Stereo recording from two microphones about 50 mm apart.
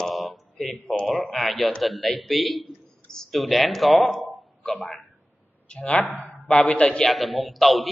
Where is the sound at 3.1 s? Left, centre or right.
Centre.